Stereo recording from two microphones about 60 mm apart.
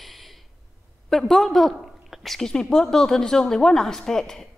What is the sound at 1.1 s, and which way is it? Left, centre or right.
A woman's voice, centre.